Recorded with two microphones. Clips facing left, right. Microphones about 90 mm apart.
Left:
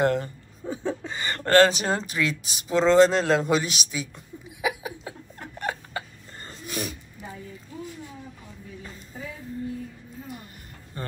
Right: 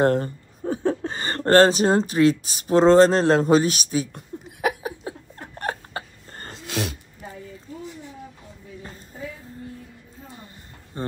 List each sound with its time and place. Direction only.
0.0 s speech: 40° right (ahead or behind)
4.1 s a sound: 55° right (ahead or behind)
5.1 s chuckle: 30° right (ahead or behind)
5.6 s hiccup: 40° right (ahead or behind)
6.4 s sneeze: 85° right
10.9 s a sound: 25° right (ahead or behind)